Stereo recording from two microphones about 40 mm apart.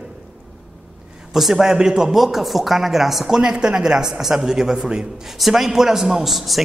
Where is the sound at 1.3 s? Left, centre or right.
Centre.